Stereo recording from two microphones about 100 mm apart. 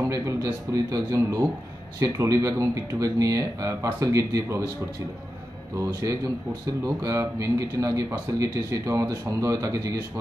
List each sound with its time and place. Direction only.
0.1 s speech: 30° right (ahead or behind)
5.8 s speech: 35° right (ahead or behind)